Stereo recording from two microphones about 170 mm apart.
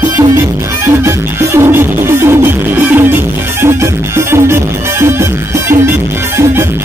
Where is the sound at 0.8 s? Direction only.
15° right (ahead or behind).